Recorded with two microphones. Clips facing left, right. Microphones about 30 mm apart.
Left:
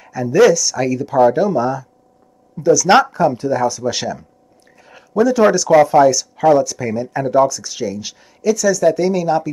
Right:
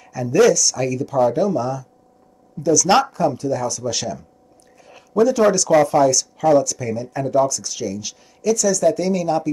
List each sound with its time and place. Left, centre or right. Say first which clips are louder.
0.0 s speech: left 3 dB; centre